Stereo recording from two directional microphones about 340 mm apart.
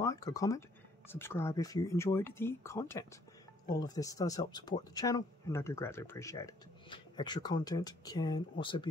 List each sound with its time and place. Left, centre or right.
0.0 s speech: centre